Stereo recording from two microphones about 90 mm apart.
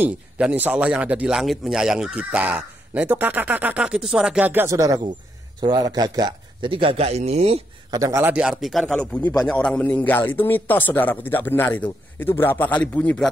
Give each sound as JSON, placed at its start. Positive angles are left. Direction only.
{"t": 0.0, "sound": "speech", "side_deg": -15}
{"t": 1.4, "sound": "speech", "side_deg": 0}
{"t": 4.6, "sound": "speech", "side_deg": -40}
{"t": 6.7, "sound": "speech", "side_deg": -80}
{"t": 7.9, "sound": "a man's voice", "side_deg": -40}
{"t": 8.4, "sound": "speech", "side_deg": -5}
{"t": 8.8, "sound": "speech", "side_deg": 10}